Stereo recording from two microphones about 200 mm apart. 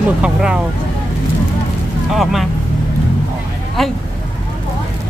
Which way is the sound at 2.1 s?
Centre (ahead or behind).